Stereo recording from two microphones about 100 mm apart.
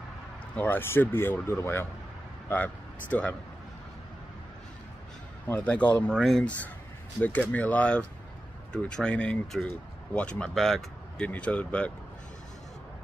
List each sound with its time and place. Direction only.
0.6 s speech: 20° left (ahead or behind)
5.5 s speech: 15° left (ahead or behind)
7.2 s speech: 15° left (ahead or behind)
11.2 s speech: 15° left (ahead or behind)